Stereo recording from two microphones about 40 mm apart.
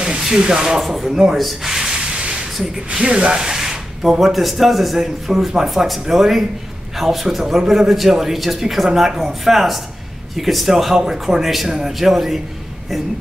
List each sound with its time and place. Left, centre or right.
0.4 s speech: centre
1.1 s speech: centre
1.4 s rub: centre
2.6 s speech: centre
5.0 s speech: centre